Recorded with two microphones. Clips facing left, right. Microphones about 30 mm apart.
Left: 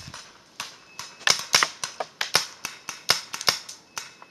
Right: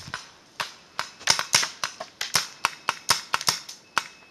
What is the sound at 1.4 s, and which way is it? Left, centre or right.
Typing, centre.